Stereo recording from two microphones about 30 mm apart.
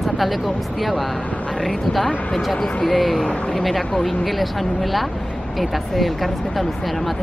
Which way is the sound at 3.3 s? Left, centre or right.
Left.